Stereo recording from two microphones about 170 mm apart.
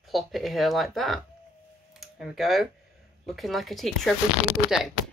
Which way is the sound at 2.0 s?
Centre (ahead or behind).